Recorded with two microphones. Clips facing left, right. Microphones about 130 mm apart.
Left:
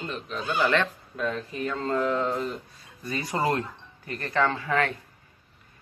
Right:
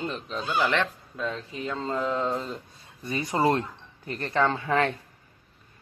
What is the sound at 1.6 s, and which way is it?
Mantra, 10° right (ahead or behind).